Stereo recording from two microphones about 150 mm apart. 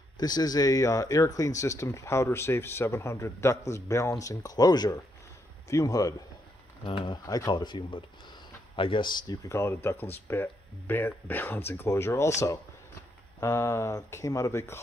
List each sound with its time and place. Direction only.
0.2 s speech: 25° left (ahead or behind)
13.4 s speech: 20° left (ahead or behind)